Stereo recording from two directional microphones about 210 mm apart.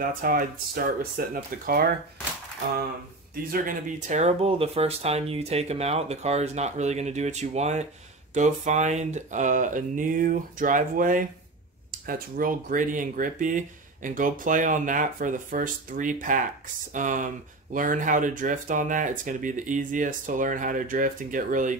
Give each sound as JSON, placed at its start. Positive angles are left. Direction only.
{"t": 0.0, "sound": "speech", "side_deg": -40}
{"t": 3.5, "sound": "speech", "side_deg": -35}